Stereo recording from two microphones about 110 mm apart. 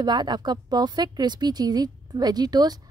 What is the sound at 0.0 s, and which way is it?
Speech, 40° right (ahead or behind).